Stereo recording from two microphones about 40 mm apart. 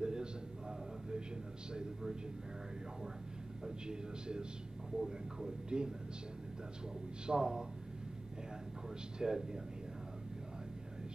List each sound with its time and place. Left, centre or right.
0.0 s a sound: centre
1.7 s a man's voice: centre
3.6 s a man's voice: centre
4.9 s speech: centre
5.7 s a man's voice: right
7.2 s a man's voice: centre
9.2 s speech: centre